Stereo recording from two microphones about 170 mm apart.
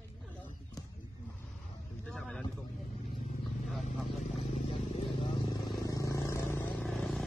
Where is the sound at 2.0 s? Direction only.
5° left (ahead or behind).